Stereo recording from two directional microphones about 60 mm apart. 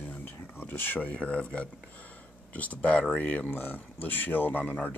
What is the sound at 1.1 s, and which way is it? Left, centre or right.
Speech, left.